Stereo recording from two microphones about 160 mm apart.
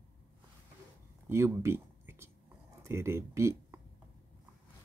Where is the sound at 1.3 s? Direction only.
15° right (ahead or behind).